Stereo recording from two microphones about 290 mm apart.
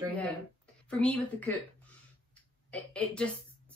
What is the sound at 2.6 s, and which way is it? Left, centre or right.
Speech, centre.